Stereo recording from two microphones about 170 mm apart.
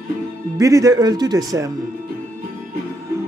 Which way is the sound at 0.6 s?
20° right (ahead or behind).